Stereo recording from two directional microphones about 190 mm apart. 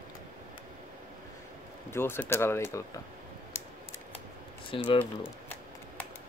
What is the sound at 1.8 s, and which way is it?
Speech, 10° left (ahead or behind).